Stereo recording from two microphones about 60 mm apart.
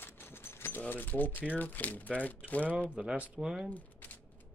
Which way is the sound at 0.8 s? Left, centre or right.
Left.